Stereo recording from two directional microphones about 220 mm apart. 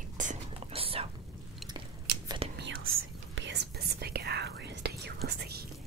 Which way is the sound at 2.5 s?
60° right (ahead or behind).